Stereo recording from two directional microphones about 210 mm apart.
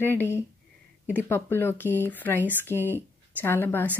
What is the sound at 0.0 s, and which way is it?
A woman's voice, 10° left (ahead or behind).